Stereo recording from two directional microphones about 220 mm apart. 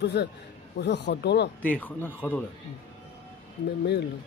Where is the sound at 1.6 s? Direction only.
5° left (ahead or behind).